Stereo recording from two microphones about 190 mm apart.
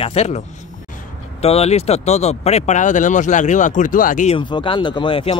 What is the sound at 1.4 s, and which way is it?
Speech, 30° left (ahead or behind).